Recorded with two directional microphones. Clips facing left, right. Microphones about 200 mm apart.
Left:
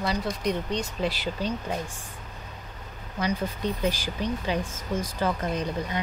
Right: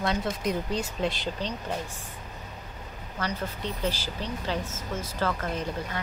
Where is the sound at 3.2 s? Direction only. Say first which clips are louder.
Left 4 dB; 15° left (ahead or behind).